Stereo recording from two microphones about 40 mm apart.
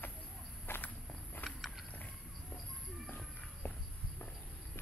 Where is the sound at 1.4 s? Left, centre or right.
Left.